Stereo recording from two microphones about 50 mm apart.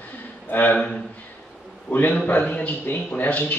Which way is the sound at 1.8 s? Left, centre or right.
Left.